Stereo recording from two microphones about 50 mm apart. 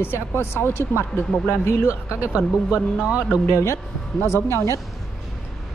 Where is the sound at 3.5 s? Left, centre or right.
Left.